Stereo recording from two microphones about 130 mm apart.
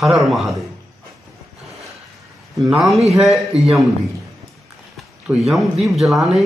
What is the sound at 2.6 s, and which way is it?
Speech, centre (ahead or behind).